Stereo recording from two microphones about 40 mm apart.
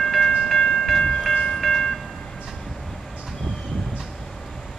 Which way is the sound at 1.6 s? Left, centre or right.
Centre.